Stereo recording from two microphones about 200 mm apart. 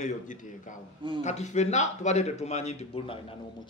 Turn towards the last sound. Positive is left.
turn(degrees=30)  # may be behind; listen again after turning